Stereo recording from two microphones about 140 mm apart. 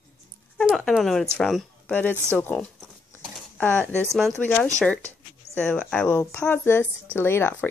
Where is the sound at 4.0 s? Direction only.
Centre (ahead or behind).